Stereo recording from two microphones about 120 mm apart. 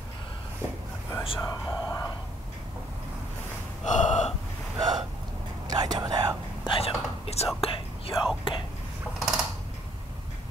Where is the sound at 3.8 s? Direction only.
90° left.